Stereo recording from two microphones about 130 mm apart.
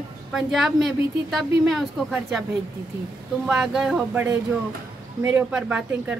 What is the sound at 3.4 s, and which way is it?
Speech, 5° right (ahead or behind).